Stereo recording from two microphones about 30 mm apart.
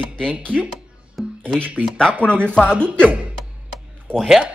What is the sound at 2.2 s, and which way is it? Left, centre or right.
Chopping, left.